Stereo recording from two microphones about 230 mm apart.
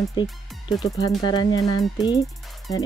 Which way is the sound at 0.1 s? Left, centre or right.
Centre.